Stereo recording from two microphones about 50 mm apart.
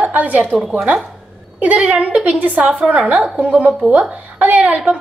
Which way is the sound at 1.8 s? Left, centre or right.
Right.